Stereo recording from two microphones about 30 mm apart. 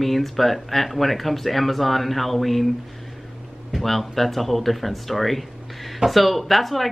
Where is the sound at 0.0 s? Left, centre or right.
Centre.